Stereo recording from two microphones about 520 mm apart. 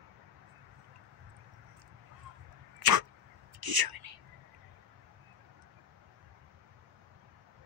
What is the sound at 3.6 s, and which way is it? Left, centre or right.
Whispering, right.